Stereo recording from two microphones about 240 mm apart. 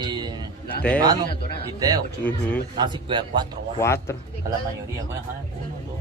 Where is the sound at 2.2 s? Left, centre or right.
Centre.